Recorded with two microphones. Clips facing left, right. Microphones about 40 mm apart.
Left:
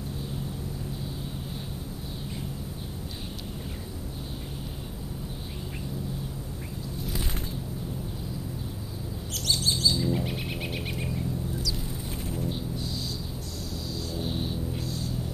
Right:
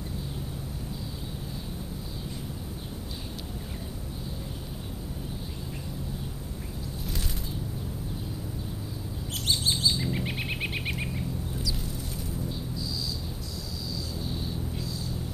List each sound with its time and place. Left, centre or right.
9.3 s chirp: right
12.3 s a sound: left
13.8 s music: left